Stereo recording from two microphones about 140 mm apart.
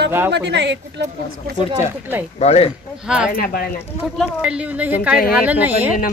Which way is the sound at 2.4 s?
45° left (ahead or behind).